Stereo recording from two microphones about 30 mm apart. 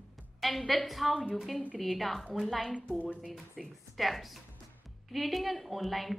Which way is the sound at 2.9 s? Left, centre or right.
Left.